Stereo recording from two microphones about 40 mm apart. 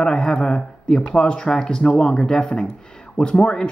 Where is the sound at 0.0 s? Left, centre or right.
Left.